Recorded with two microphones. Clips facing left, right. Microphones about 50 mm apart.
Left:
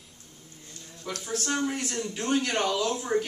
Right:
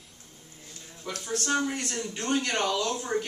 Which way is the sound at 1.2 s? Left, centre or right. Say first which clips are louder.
Right 1 dB; centre.